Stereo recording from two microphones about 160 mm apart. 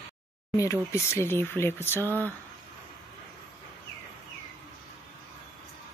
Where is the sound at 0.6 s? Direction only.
20° left (ahead or behind).